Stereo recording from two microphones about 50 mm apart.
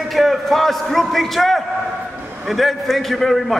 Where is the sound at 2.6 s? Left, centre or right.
Centre.